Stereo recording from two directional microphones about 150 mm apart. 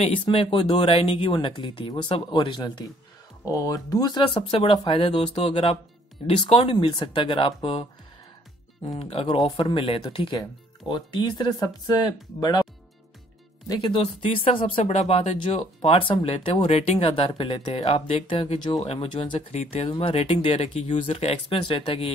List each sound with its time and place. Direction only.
0.2 s speech: 35° left (ahead or behind)
9.0 s speech: 40° left (ahead or behind)
13.7 s speech: 35° left (ahead or behind)
19.5 s speech: 45° left (ahead or behind)